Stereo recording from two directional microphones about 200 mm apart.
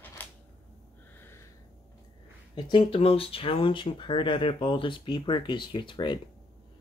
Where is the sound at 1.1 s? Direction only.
10° left (ahead or behind).